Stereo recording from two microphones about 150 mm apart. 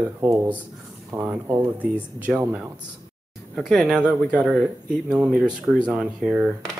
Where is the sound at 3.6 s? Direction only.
Centre (ahead or behind).